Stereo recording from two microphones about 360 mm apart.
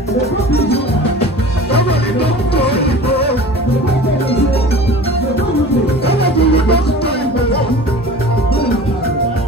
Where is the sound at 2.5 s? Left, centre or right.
Left.